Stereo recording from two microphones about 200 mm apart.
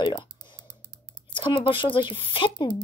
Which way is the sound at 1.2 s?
25° left (ahead or behind).